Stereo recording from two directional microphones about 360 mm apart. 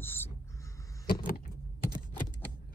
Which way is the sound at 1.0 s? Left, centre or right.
Left.